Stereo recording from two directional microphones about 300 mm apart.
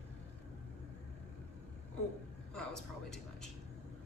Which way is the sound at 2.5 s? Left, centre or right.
Centre.